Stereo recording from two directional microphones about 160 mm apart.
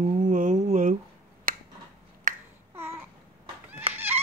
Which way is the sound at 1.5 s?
65° right (ahead or behind).